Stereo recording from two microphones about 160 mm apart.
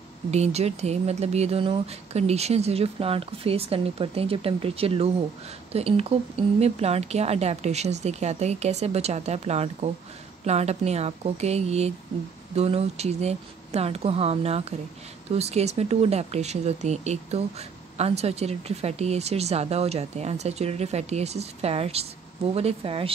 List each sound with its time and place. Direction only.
0.3 s speech: 40° right (ahead or behind)